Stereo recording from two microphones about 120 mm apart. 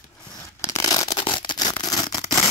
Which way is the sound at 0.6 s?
25° left (ahead or behind).